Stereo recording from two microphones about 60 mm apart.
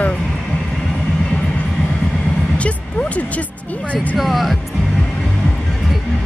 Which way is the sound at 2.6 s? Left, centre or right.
Left.